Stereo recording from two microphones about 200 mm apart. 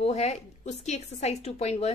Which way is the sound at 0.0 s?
30° left (ahead or behind).